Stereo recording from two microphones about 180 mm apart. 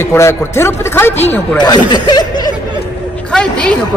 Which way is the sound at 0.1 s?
15° left (ahead or behind).